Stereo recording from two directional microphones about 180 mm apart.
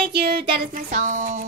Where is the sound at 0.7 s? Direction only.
45° right (ahead or behind).